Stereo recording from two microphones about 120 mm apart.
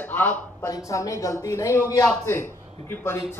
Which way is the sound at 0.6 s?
25° left (ahead or behind).